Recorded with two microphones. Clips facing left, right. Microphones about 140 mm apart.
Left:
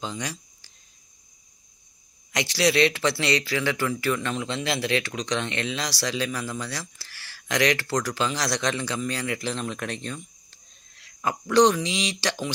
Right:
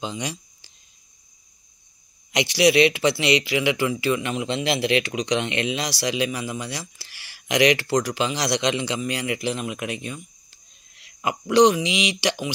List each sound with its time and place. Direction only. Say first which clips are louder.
0.0 s speech: right 3 dB; 15° right (ahead or behind)
2.3 s speech: right 5 dB; 15° right (ahead or behind)